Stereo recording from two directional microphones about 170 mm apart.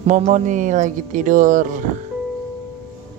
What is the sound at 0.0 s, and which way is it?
Speech, 45° right (ahead or behind).